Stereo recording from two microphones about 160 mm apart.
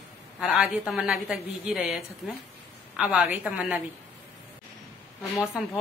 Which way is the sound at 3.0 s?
5° right (ahead or behind).